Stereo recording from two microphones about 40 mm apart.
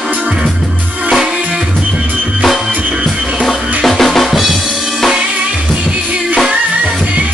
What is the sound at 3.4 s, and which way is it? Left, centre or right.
Drum, centre.